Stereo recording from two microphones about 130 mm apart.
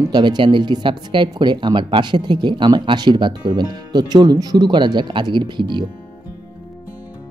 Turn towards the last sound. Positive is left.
turn(degrees=-35)  # may be behind; listen again after turning